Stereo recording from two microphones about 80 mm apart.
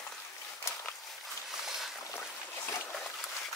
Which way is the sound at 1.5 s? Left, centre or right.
Centre.